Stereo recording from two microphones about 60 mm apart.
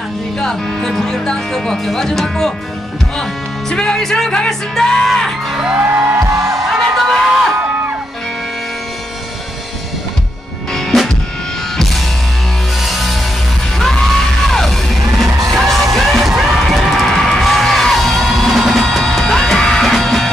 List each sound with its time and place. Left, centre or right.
0.4 s speech: centre
5.8 s music: right
6.7 s a sound: centre
10.7 s music: centre